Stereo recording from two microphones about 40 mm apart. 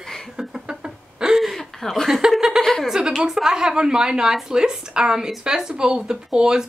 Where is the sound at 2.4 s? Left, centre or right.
Centre.